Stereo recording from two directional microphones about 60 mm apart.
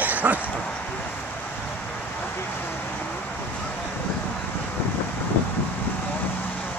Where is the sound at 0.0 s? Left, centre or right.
Right.